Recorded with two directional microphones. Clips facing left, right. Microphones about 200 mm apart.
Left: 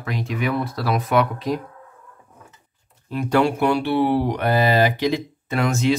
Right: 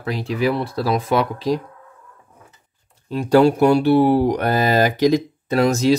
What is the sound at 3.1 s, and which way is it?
Speech, 35° right (ahead or behind).